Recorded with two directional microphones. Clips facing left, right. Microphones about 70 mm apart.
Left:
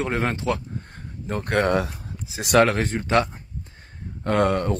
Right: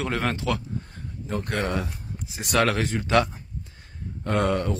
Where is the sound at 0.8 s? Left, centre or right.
Left.